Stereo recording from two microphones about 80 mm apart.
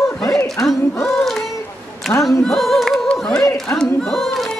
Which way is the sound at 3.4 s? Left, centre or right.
Left.